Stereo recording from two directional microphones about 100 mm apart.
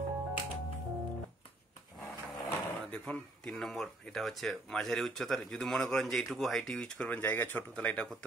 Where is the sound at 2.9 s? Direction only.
10° left (ahead or behind).